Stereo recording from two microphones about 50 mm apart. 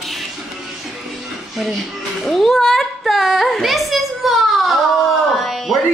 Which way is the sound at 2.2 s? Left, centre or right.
Centre.